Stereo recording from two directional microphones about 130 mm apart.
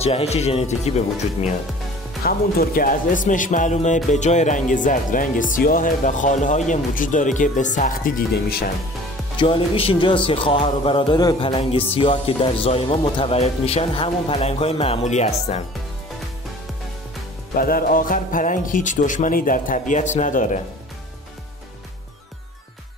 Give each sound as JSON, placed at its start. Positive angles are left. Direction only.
{"t": 0.0, "sound": "speech", "side_deg": 50}
{"t": 2.7, "sound": "speech", "side_deg": 90}
{"t": 9.4, "sound": "speech", "side_deg": 45}
{"t": 17.6, "sound": "speech", "side_deg": 90}